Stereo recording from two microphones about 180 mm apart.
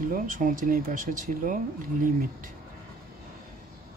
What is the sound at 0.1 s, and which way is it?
Speech, 50° right (ahead or behind).